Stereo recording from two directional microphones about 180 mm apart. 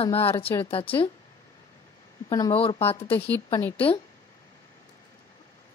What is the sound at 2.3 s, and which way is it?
Speech, 20° left (ahead or behind).